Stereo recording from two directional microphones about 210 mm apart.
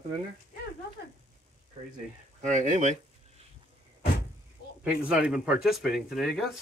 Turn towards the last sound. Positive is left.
turn(degrees=0)  # may be behind; listen again after turning